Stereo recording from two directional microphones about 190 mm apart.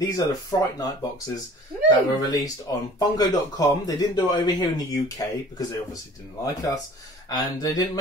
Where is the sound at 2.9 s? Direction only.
20° left (ahead or behind).